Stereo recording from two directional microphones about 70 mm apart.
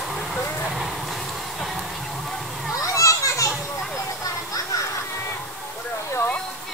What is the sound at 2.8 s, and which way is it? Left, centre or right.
Children playing, left.